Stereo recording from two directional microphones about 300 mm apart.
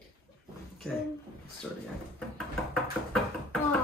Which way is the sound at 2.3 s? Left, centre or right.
Centre.